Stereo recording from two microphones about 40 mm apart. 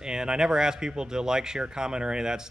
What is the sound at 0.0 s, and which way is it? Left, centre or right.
Speech, centre.